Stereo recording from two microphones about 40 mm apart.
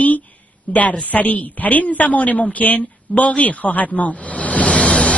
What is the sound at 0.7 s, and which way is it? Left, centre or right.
A woman's voice, left.